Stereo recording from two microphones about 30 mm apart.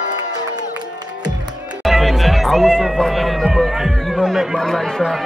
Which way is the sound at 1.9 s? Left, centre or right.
Centre.